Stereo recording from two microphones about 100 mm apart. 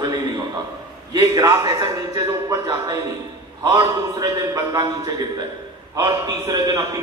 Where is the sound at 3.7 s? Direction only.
40° right (ahead or behind).